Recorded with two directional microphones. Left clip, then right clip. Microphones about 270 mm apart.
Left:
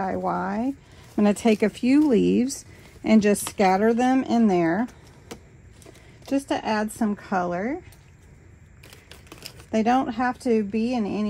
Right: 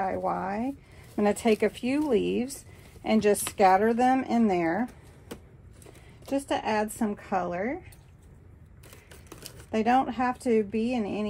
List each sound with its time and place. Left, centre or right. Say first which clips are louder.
0.0 s speech: left 3 dB; left
6.2 s speech: left 3 dB; left
9.7 s speech: left 2 dB; left